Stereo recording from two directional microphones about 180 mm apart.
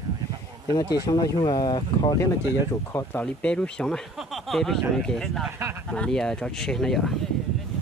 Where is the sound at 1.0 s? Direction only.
20° left (ahead or behind).